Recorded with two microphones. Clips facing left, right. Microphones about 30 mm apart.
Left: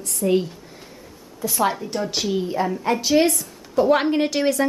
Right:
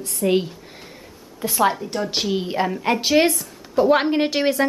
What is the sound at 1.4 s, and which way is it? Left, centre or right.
Speech, centre.